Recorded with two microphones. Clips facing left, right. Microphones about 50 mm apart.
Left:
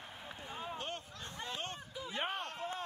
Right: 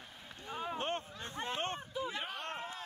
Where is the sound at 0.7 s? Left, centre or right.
Right.